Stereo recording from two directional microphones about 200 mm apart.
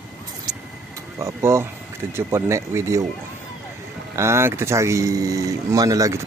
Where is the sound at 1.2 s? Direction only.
15° right (ahead or behind).